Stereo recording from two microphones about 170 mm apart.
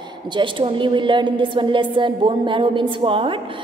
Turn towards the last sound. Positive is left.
turn(degrees=-30)  # may be behind; listen again after turning